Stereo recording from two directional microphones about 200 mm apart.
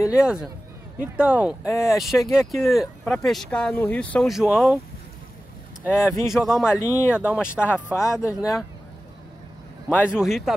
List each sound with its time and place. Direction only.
0.1 s speech: 5° right (ahead or behind)
5.9 s speech: 15° left (ahead or behind)
6.2 s speech: centre (ahead or behind)
6.7 s speech: 15° left (ahead or behind)
7.2 s speech: 5° right (ahead or behind)
7.6 s speech: 10° left (ahead or behind)
9.8 s a man's voice: 10° left (ahead or behind)
10.1 s speech: centre (ahead or behind)